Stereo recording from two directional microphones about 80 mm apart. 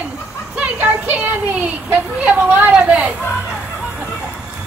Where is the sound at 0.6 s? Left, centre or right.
Centre.